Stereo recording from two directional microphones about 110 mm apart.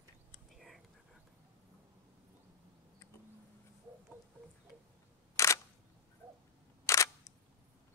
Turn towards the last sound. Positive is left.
turn(degrees=30)  # may be behind; listen again after turning